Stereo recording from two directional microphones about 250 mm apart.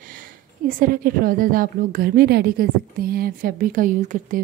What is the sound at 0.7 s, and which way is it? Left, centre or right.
A woman's voice, right.